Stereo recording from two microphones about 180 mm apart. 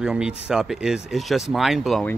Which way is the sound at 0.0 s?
5° right (ahead or behind).